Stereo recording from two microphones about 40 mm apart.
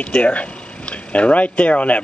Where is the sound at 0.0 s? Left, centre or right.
Left.